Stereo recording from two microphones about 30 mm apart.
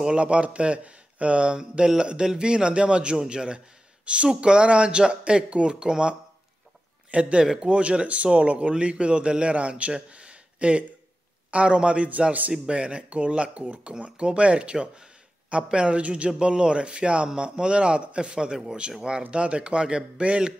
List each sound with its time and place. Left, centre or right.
0.1 s speech: right
1.5 s a man's voice: right
7.1 s a man's voice: right
18.4 s speech: right
19.3 s a man's voice: right